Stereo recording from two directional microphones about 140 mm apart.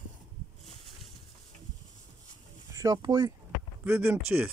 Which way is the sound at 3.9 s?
15° right (ahead or behind).